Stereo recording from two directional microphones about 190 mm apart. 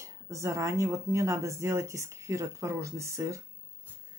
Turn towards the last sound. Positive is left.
turn(degrees=-15)  # may be behind; listen again after turning